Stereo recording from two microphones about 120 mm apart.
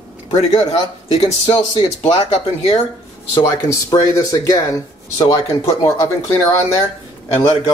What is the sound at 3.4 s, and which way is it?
Speech, 30° left (ahead or behind).